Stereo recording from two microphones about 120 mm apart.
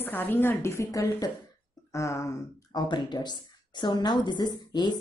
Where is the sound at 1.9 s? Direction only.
25° left (ahead or behind).